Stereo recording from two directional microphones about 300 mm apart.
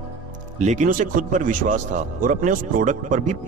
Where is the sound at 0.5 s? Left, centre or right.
Right.